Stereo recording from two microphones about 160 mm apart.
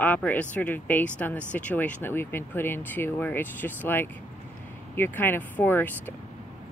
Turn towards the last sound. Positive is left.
turn(degrees=10)  # may be behind; listen again after turning